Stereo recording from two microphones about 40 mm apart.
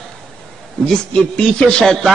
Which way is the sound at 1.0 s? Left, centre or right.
Centre.